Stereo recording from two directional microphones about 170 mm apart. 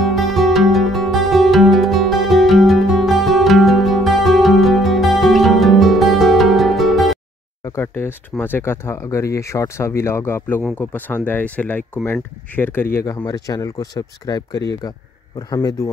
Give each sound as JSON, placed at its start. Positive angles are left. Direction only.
{"t": 0.0, "sound": "music", "side_deg": 0}
{"t": 7.6, "sound": "speech", "side_deg": 15}